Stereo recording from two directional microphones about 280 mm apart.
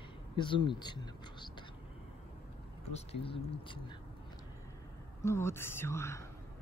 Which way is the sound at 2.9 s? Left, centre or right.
Left.